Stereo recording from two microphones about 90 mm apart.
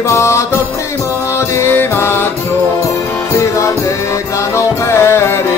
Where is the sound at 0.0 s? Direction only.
35° left (ahead or behind).